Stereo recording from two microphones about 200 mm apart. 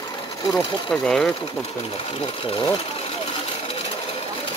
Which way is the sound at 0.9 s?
5° left (ahead or behind).